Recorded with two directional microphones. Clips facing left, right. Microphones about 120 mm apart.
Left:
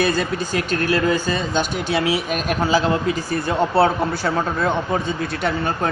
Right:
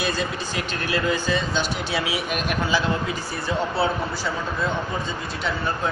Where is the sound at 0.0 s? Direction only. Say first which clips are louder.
Left 6 dB; 50° left (ahead or behind).